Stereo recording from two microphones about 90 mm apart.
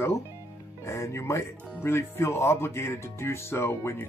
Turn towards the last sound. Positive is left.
turn(degrees=30)  # may be behind; listen again after turning